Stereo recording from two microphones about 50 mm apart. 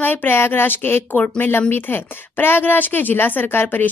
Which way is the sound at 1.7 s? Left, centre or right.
Left.